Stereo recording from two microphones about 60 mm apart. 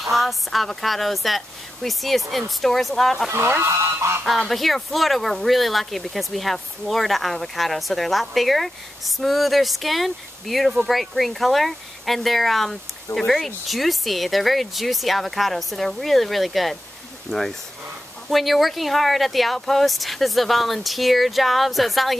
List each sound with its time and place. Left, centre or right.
0.0 s speech: centre
3.6 s speech: right
4.4 s speech: centre